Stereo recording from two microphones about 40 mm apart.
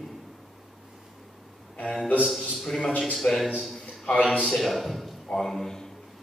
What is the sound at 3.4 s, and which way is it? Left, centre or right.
Speech, centre.